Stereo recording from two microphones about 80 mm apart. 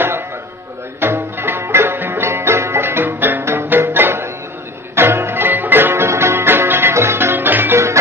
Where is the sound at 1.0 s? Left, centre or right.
Right.